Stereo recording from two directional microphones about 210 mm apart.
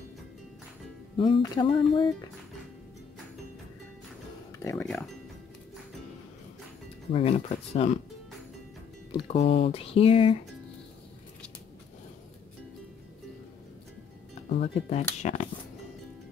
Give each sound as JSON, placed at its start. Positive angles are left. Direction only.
{"t": 1.1, "sound": "speech", "side_deg": 25}
{"t": 4.6, "sound": "speech", "side_deg": 10}
{"t": 7.1, "sound": "speech", "side_deg": 30}
{"t": 9.1, "sound": "speech", "side_deg": 25}
{"t": 14.5, "sound": "speech", "side_deg": 30}